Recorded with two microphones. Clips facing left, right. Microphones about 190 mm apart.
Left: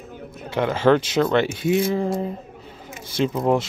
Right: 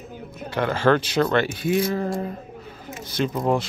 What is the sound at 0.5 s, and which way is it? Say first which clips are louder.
Speech: left 2 dB; 20° left (ahead or behind).